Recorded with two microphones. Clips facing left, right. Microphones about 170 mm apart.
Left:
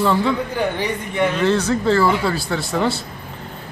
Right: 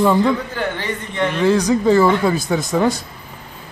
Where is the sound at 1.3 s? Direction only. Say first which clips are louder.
Right 7 dB; 10° right (ahead or behind).